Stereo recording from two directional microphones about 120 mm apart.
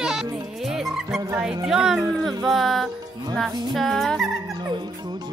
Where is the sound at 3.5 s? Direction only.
35° right (ahead or behind).